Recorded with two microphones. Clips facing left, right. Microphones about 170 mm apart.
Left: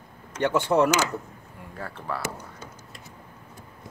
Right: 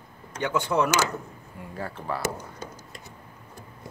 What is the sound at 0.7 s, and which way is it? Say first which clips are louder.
Speech: left 4 dB; 25° left (ahead or behind).